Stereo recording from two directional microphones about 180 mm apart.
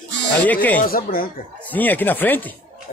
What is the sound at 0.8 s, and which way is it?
Speech, 55° left (ahead or behind).